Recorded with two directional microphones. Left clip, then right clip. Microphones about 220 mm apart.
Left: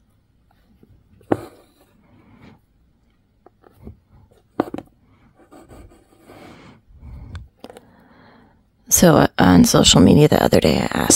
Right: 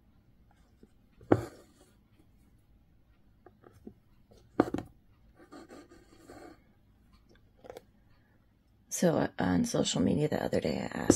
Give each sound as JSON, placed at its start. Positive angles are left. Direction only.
{"t": 1.3, "sound": "writing", "side_deg": 10}
{"t": 4.6, "sound": "a sound", "side_deg": 10}
{"t": 5.4, "sound": "filing", "side_deg": 10}
{"t": 8.8, "sound": "speech", "side_deg": 50}